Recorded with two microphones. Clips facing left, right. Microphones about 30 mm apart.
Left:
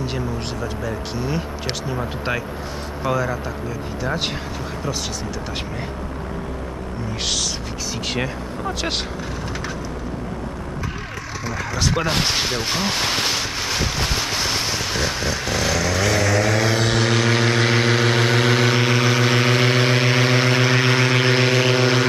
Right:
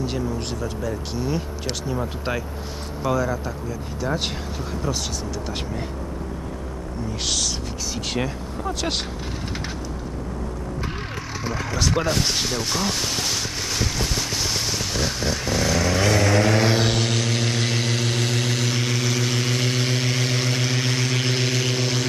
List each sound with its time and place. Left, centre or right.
0.0 s speech: centre
8.1 s speech: centre
11.7 s speech: centre
12.3 s speech: left
13.0 s a sound: left
13.3 s a sound: left
14.0 s vehicle: left
15.2 s vehicle: left
15.7 s vehicle: left
16.8 s vehicle: centre